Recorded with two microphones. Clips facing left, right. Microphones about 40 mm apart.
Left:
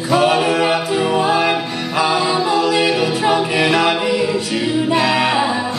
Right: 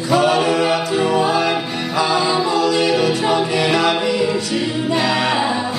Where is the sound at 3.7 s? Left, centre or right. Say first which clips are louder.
Left 1 dB; centre.